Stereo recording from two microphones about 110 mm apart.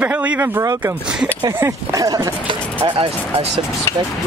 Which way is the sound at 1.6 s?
30° right (ahead or behind).